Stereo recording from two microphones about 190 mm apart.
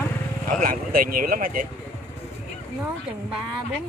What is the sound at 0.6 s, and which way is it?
A man's voice, 50° right (ahead or behind).